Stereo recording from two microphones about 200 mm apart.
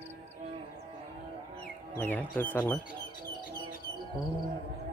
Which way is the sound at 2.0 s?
10° left (ahead or behind).